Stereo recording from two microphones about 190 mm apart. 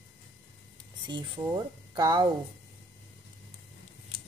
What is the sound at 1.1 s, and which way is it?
Speech, 20° right (ahead or behind).